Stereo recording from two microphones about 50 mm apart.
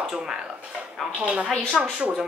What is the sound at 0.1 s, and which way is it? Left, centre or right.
Speech, centre.